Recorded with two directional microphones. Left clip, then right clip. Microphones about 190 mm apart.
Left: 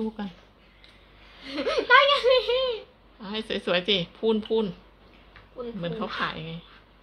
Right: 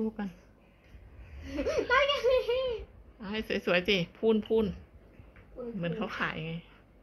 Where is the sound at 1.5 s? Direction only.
25° left (ahead or behind).